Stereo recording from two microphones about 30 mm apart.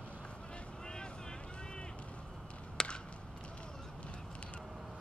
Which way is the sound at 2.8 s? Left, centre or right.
Centre.